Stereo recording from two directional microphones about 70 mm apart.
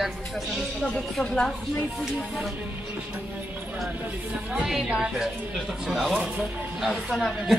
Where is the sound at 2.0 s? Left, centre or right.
Centre.